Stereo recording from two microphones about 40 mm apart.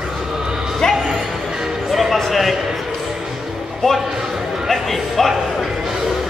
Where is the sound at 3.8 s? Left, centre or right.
Centre.